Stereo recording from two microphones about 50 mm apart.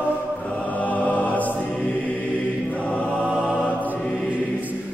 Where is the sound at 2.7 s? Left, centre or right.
Left.